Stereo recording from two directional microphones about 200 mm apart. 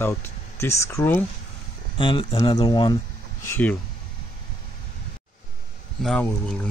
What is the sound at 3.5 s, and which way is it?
Speech, 10° left (ahead or behind).